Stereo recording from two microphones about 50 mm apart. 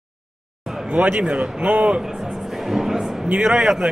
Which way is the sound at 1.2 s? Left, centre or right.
Centre.